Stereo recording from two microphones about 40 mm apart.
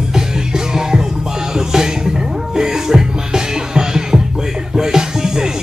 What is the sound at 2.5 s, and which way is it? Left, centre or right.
Music, centre.